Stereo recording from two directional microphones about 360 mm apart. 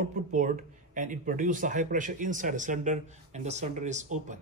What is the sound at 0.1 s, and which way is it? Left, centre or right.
Speech, right.